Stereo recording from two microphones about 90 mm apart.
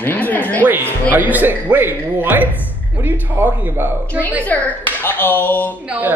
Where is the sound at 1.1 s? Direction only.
20° right (ahead or behind).